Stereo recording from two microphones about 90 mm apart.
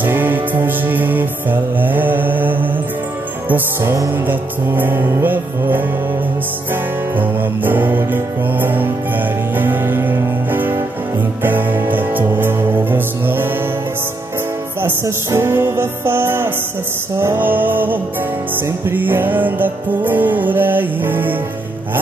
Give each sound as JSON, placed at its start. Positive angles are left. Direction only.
{"t": 0.0, "sound": "music", "side_deg": -20}
{"t": 14.8, "sound": "music", "side_deg": -25}